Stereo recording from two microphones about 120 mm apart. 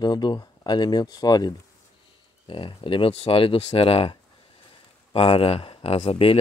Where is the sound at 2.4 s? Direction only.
45° left (ahead or behind).